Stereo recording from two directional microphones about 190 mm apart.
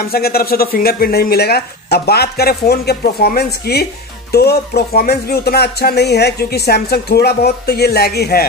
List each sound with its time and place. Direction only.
0.0 s speech: 55° left (ahead or behind)